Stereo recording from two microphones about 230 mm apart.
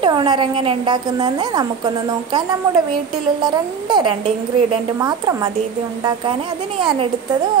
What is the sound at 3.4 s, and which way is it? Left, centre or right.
A woman's voice, centre.